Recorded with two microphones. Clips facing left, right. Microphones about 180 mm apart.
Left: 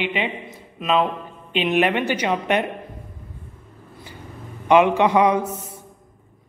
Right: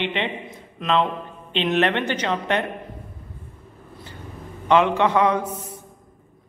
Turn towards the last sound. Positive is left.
turn(degrees=30)  # may be behind; listen again after turning